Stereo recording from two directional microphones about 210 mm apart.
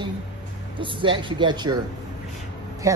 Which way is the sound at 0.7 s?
25° right (ahead or behind).